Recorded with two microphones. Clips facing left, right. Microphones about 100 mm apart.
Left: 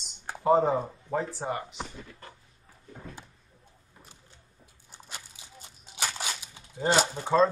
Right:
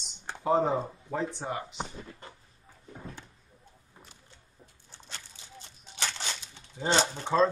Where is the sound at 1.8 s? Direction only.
25° right (ahead or behind).